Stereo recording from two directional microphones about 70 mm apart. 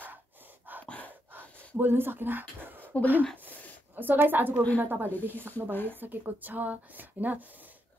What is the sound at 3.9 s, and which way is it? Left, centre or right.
Speech, right.